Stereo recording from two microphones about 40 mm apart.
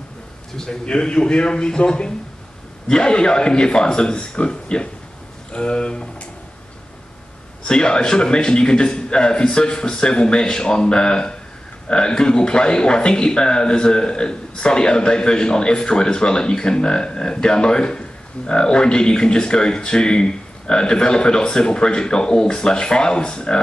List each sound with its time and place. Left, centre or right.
0.8 s speech: left
7.6 s speech: left